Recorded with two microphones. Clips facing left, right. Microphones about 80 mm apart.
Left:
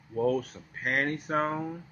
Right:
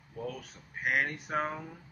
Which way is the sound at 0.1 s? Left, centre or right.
Left.